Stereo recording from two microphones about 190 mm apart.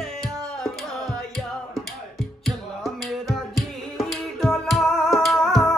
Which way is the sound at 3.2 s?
Centre (ahead or behind).